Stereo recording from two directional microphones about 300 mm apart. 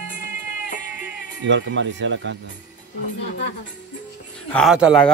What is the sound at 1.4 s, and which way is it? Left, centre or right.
Speech, right.